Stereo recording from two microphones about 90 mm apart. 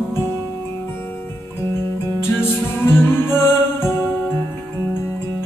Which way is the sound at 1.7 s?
30° left (ahead or behind).